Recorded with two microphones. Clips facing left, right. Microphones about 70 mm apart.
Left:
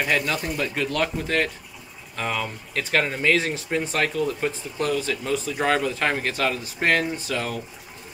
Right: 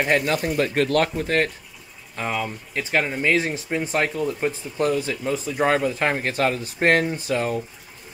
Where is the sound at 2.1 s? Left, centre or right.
Centre.